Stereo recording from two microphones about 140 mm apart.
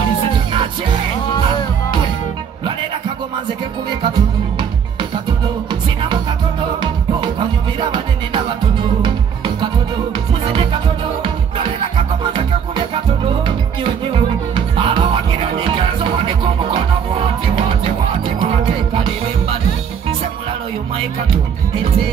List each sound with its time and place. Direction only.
0.5 s music: 35° right (ahead or behind)
4.0 s music: 35° right (ahead or behind)
6.8 s music: 35° right (ahead or behind)